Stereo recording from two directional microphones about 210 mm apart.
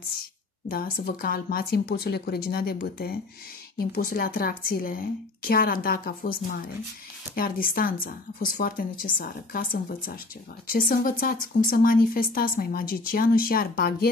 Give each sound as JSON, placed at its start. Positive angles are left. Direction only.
{"t": 0.7, "sound": "speech", "side_deg": 45}